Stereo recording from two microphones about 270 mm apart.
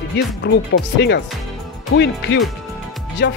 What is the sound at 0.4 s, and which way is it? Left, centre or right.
Speech, left.